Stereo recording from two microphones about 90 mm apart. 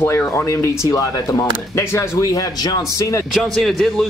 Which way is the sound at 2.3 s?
45° left (ahead or behind).